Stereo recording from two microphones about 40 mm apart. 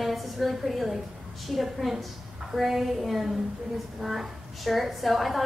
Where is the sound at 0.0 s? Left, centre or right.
Centre.